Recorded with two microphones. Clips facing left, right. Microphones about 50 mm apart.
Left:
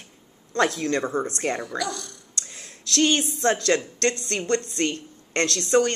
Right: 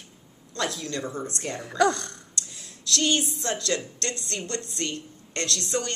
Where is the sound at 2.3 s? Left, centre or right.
Left.